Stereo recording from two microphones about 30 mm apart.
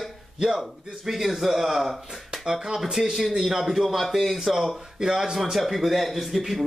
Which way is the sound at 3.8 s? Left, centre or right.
Centre.